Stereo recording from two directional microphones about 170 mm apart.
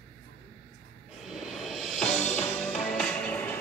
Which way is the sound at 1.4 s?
Centre (ahead or behind).